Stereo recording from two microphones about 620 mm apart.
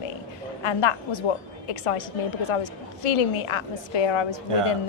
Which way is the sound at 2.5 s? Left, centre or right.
Left.